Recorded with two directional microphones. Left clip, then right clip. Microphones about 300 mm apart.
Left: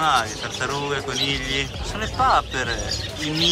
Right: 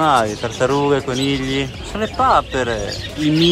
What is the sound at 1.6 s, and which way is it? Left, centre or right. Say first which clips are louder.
Speech: right 4 dB; centre.